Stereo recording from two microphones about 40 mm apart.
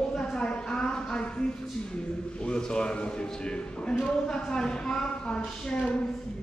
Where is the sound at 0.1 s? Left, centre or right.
Centre.